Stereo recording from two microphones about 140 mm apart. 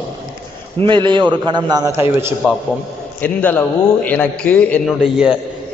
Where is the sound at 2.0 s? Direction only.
20° right (ahead or behind).